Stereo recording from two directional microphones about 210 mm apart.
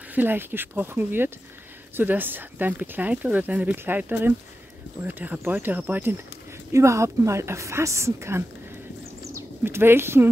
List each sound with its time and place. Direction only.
0.1 s speech: 10° right (ahead or behind)